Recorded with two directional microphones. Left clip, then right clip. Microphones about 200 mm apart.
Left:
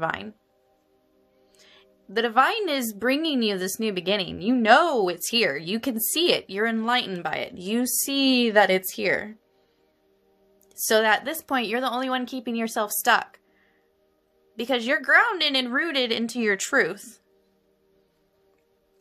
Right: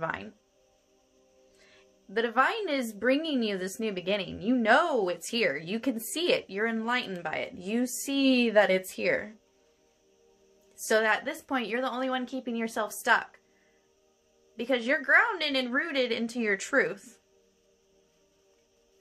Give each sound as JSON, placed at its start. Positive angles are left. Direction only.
{"t": 0.0, "sound": "speech", "side_deg": 50}
{"t": 1.6, "sound": "speech", "side_deg": 50}
{"t": 10.9, "sound": "speech", "side_deg": 50}
{"t": 14.6, "sound": "speech", "side_deg": 50}